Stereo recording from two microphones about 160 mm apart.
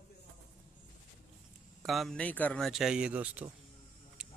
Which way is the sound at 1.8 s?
Centre (ahead or behind).